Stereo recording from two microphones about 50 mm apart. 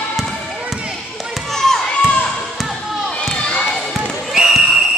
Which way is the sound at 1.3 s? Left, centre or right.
Centre.